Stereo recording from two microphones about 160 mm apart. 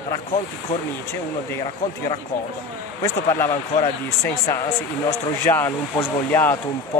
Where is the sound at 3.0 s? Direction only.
20° left (ahead or behind).